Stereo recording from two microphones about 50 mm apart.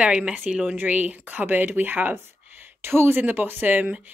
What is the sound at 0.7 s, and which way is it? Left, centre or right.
Speech, right.